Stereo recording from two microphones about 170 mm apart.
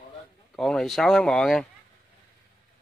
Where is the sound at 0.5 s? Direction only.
5° left (ahead or behind).